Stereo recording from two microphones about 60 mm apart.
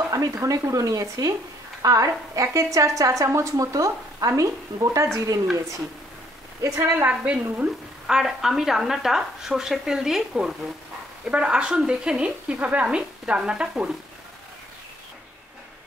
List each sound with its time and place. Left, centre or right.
0.1 s a woman's voice: right
6.8 s a woman's voice: right
7.1 s a woman's voice: right
8.1 s speech: centre